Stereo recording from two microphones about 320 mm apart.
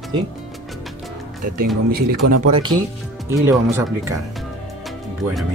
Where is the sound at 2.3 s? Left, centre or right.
Right.